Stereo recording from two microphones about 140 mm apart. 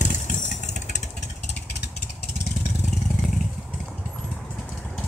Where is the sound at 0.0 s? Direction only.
60° left (ahead or behind).